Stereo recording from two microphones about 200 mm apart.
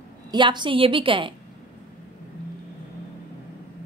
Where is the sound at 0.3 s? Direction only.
25° right (ahead or behind).